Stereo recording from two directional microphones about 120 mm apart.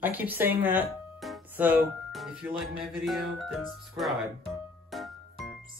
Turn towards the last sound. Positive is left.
turn(degrees=0)  # may be behind; listen again after turning